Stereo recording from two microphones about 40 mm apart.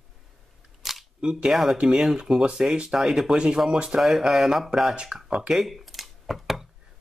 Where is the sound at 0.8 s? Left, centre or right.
Centre.